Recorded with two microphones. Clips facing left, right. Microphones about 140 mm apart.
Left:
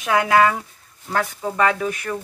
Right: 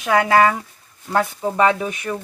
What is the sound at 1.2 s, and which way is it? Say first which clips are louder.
Speech: right 3 dB; 25° right (ahead or behind).